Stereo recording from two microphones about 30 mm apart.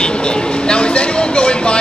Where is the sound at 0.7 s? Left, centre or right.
Left.